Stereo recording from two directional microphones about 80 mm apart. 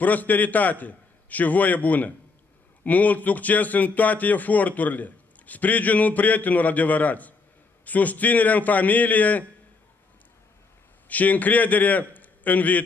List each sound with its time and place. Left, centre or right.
0.0 s a man's voice: left
11.1 s a man's voice: left